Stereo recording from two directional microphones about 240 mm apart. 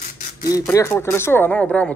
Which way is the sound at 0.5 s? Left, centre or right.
Centre.